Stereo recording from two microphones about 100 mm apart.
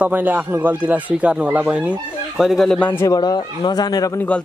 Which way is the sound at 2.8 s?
20° left (ahead or behind).